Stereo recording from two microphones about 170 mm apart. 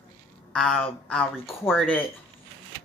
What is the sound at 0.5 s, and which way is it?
Speech, 5° left (ahead or behind).